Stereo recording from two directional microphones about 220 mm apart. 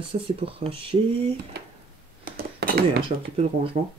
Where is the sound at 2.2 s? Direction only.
45° right (ahead or behind).